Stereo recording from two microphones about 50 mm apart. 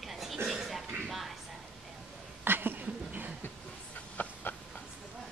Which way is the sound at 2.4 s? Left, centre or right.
Right.